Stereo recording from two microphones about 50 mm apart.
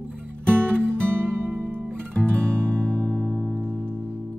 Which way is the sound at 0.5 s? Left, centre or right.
Right.